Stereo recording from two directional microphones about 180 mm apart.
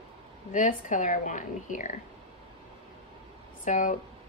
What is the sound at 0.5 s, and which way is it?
A woman's voice, 45° left (ahead or behind).